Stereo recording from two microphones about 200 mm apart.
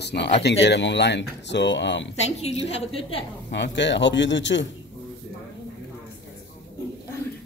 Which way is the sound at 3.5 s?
60° left (ahead or behind).